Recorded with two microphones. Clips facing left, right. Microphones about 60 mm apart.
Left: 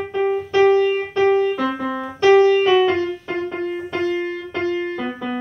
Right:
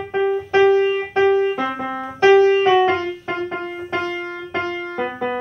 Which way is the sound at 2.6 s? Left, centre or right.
Right.